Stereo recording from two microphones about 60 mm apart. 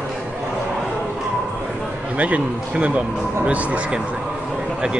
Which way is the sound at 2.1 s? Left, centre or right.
Right.